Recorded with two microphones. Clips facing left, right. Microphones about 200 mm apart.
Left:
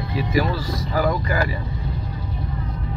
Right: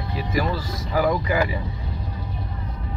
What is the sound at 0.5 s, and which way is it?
Speech, 20° right (ahead or behind).